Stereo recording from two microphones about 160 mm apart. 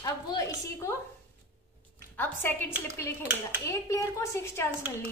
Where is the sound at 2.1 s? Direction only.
10° left (ahead or behind).